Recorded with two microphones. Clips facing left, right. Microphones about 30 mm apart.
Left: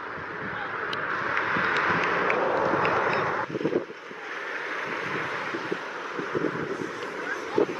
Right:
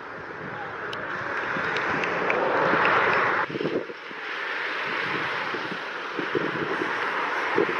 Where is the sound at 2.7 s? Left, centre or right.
Right.